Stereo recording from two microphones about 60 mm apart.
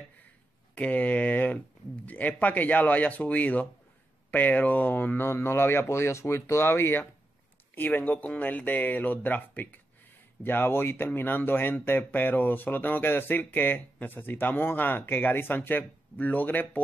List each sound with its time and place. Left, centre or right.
0.7 s speech: left
5.3 s speech: left